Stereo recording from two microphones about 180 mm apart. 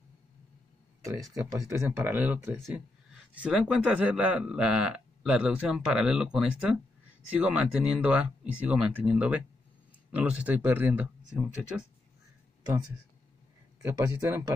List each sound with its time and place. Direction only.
1.4 s speech: 15° right (ahead or behind)
13.8 s speech: 15° right (ahead or behind)